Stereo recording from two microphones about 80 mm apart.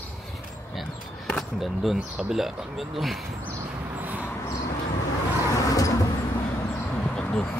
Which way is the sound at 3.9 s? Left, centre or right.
Right.